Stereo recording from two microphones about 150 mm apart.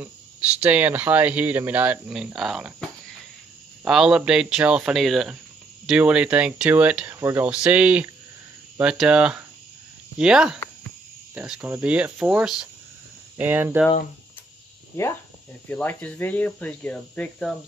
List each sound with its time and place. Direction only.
0.6 s speech: 10° right (ahead or behind)
3.8 s speech: 5° right (ahead or behind)
7.4 s speech: 5° right (ahead or behind)
15.0 s speech: 20° left (ahead or behind)